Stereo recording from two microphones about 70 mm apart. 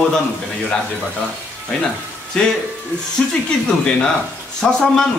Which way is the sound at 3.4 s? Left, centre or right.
Centre.